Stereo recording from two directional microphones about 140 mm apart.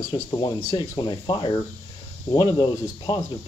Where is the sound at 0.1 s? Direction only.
30° left (ahead or behind).